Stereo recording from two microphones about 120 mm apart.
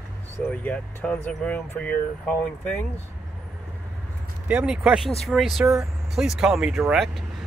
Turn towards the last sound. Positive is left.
turn(degrees=0)  # may be behind; listen again after turning